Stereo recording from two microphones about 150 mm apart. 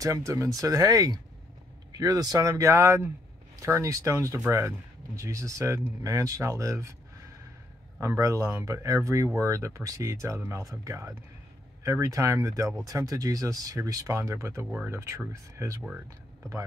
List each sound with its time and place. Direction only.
0.0 s speech: 20° right (ahead or behind)
8.0 s speech: 20° right (ahead or behind)